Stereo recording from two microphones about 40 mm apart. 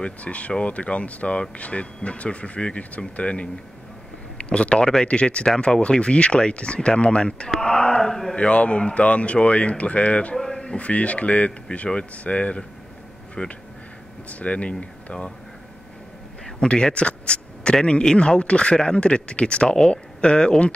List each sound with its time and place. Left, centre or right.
0.0 s speech: left
4.5 s speech: left
7.4 s a sound: centre
8.4 s speech: left
10.3 s a sound: centre
10.6 s speech: left
16.5 s speech: left